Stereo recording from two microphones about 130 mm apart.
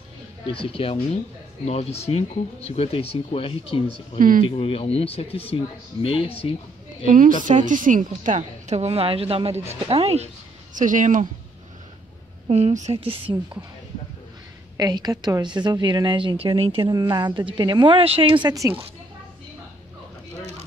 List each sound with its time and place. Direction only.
0.5 s speech: 45° left (ahead or behind)
7.1 s a woman's voice: 90° right
7.4 s a woman's voice: 80° right
8.2 s a woman's voice: 70° right (ahead or behind); by 10.3 s 55° right (ahead or behind)
10.7 s a woman's voice: 80° right
12.4 s speech: 55° right (ahead or behind)
12.9 s a woman's voice: 45° right (ahead or behind)
14.8 s speech: 30° right (ahead or behind)
18.5 s a woman's voice: 25° right (ahead or behind)